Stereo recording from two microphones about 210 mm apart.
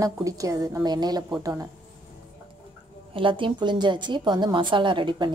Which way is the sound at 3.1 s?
25° right (ahead or behind).